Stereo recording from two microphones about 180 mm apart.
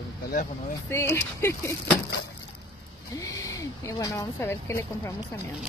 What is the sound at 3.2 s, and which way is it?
Speech, 20° left (ahead or behind).